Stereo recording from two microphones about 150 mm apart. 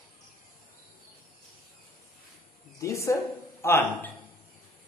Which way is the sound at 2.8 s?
20° left (ahead or behind).